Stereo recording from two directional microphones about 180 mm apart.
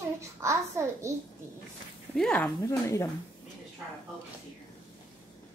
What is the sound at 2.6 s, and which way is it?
Speech, 15° left (ahead or behind).